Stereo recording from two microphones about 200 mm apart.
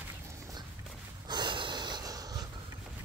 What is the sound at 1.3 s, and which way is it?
Snort, 25° right (ahead or behind).